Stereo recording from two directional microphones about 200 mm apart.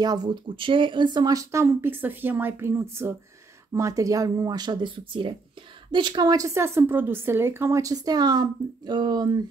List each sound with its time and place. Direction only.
0.0 s a woman's voice: 20° right (ahead or behind)